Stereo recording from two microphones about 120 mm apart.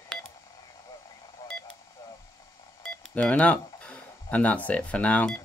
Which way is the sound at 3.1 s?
10° left (ahead or behind).